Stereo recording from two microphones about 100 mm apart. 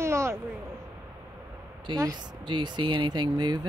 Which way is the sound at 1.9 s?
35° right (ahead or behind).